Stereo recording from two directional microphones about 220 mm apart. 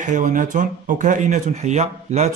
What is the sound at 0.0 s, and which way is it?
A man's voice, 35° right (ahead or behind).